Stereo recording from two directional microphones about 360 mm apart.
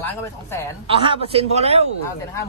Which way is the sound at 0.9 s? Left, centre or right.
Centre.